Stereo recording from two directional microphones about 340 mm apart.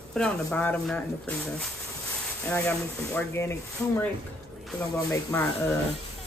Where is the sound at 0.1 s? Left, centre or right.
Centre.